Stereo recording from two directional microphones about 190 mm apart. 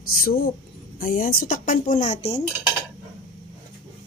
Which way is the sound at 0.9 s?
50° left (ahead or behind).